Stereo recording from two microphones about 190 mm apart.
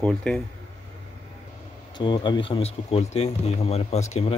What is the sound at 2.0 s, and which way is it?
Speech, 25° left (ahead or behind).